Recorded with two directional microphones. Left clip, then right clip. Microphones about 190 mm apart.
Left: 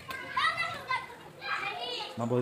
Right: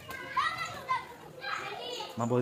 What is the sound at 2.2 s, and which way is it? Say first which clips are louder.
Speech: right 2 dB; 10° right (ahead or behind).